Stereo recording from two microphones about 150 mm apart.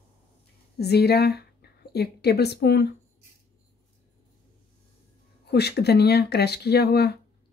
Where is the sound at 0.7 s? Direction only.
90° left.